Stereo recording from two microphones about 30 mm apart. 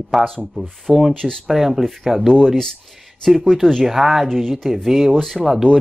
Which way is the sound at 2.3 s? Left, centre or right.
Centre.